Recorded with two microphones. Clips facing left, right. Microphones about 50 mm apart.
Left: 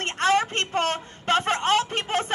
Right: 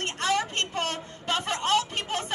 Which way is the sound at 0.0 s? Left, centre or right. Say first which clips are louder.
Left 5 dB; left.